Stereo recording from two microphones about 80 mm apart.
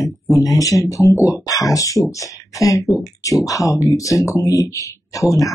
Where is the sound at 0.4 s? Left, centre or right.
Left.